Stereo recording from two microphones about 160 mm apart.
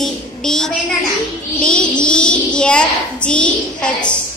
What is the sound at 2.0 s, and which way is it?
A child's voice, 5° left (ahead or behind).